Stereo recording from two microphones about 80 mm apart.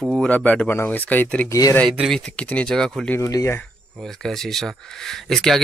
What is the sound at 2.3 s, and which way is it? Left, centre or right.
Speech, centre.